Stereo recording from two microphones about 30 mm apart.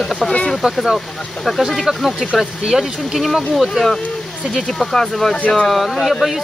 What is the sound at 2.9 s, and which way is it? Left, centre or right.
Speech, centre.